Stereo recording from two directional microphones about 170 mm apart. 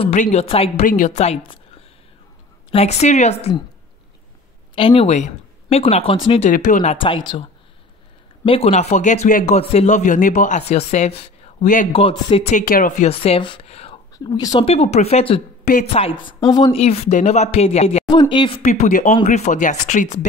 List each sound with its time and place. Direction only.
0.0 s speech: 45° left (ahead or behind)
0.8 s speech: 50° left (ahead or behind)
2.7 s speech: 40° left (ahead or behind)
4.7 s speech: 35° left (ahead or behind)
6.4 s speech: 45° left (ahead or behind)
7.0 s speech: 30° left (ahead or behind)
8.5 s speech: 35° left (ahead or behind)
11.9 s speech: 30° left (ahead or behind)
12.5 s speech: 55° left (ahead or behind)
13.0 s speech: 35° left (ahead or behind)
14.1 s speech: 20° left (ahead or behind)
14.7 s speech: 40° left (ahead or behind)
16.7 s speech: 40° left (ahead or behind)